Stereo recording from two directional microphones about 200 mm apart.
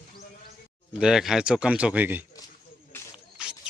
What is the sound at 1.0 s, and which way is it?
Speech, centre (ahead or behind).